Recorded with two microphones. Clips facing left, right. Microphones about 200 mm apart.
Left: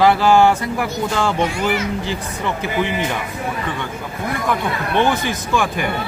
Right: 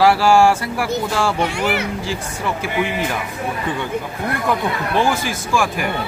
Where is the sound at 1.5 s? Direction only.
65° right (ahead or behind).